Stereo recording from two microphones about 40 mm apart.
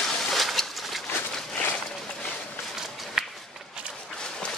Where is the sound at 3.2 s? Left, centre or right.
Centre.